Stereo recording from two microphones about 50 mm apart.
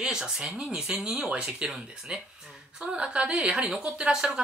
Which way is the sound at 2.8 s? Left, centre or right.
Centre.